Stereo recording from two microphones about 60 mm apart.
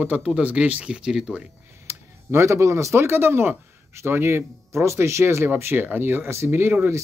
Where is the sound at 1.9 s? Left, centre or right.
Right.